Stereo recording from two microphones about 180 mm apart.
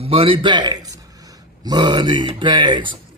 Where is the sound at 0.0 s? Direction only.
30° right (ahead or behind).